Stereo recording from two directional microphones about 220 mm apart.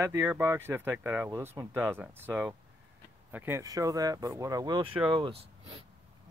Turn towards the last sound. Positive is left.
turn(degrees=-25)  # may be behind; listen again after turning